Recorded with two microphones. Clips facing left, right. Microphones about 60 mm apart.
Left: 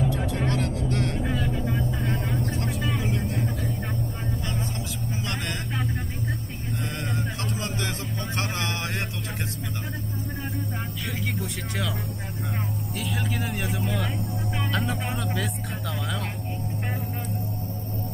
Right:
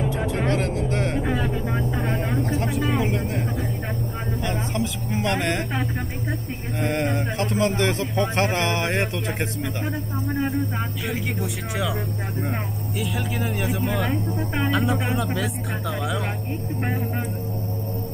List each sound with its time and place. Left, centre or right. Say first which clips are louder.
0.0 s vehicle: right 2 dB; right
3.0 s vehicle: right 4 dB; right
4.5 s vehicle: right 6 dB; right
6.8 s a sound: right 9 dB; right
7.5 s speech: right 9 dB; right
11.1 s speech: right 2 dB; centre
13.0 s speech: right 3 dB; centre